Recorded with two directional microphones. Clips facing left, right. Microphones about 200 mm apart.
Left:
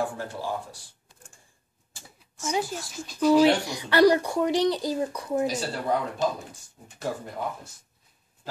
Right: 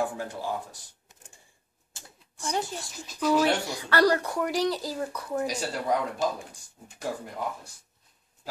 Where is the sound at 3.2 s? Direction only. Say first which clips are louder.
Left 5 dB; 10° left (ahead or behind).